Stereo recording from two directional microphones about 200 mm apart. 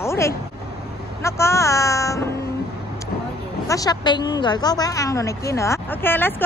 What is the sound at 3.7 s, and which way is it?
Speech, 20° left (ahead or behind).